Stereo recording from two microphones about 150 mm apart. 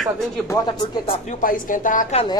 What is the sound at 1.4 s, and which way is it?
Speech, 65° left (ahead or behind).